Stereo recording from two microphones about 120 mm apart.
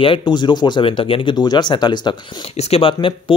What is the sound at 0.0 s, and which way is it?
Speech, 45° left (ahead or behind).